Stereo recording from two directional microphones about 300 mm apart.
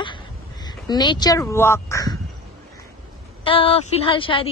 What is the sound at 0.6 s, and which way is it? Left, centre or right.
Speech, centre.